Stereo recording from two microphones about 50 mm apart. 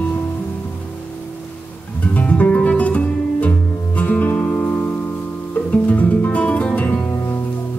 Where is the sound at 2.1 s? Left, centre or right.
Left.